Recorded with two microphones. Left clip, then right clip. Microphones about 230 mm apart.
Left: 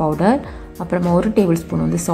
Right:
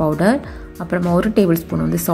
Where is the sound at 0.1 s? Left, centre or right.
Centre.